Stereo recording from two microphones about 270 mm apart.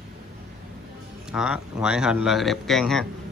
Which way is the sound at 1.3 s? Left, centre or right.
Centre.